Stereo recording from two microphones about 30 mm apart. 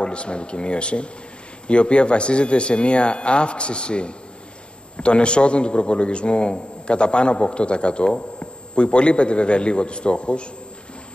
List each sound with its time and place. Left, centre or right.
0.0 s a man's voice: left